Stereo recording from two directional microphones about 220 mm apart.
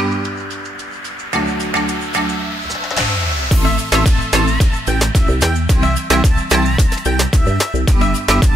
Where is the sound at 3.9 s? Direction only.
Centre (ahead or behind).